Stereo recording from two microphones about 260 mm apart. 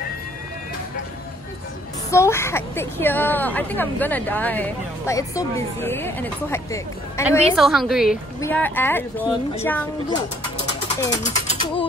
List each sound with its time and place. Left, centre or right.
2.0 s a woman's voice: centre
7.2 s a woman's voice: centre
11.2 s mechanisms: left